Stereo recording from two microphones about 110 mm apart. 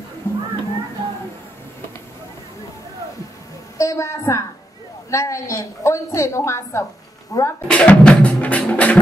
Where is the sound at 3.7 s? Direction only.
30° left (ahead or behind).